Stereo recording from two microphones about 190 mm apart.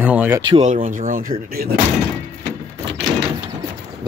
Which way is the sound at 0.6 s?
40° right (ahead or behind).